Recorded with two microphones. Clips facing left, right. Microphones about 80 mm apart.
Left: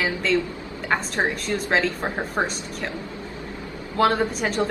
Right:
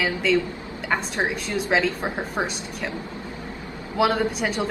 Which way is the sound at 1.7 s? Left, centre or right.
Centre.